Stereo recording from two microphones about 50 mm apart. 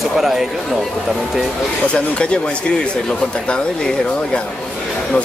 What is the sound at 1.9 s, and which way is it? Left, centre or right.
Speech, left.